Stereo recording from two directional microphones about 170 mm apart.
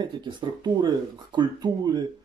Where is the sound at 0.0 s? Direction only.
25° right (ahead or behind).